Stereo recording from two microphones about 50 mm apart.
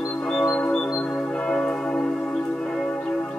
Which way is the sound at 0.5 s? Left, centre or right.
Left.